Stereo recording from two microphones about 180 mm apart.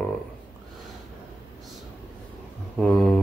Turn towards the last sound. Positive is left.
turn(degrees=0)  # may be behind; listen again after turning